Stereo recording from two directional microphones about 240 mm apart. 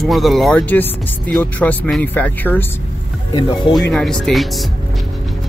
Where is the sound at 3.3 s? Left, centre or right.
Centre.